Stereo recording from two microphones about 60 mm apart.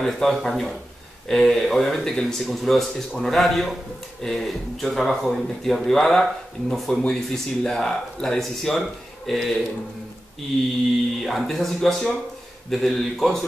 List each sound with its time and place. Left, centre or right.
0.0 s speech: centre
11.2 s speech: centre